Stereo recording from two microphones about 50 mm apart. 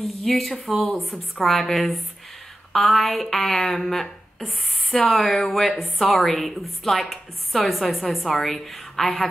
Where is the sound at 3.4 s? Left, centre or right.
Centre.